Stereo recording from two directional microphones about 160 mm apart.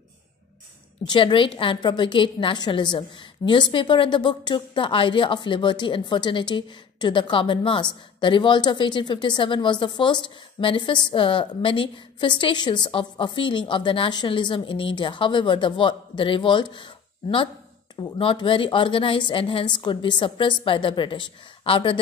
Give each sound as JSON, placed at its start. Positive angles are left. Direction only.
{"t": 1.0, "sound": "a woman's voice", "side_deg": 30}